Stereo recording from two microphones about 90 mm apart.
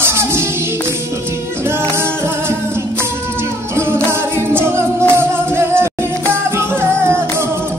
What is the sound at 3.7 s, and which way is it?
Music, 25° right (ahead or behind).